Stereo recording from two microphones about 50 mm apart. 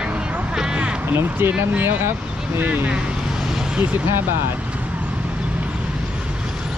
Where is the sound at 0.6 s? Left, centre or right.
Centre.